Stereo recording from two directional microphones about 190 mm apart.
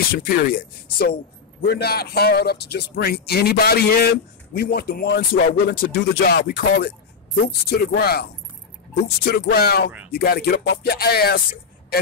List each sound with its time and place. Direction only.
0.1 s a man's voice: 50° left (ahead or behind)